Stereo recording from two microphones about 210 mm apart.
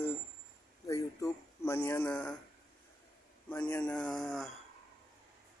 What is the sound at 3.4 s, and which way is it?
Speech, 10° left (ahead or behind).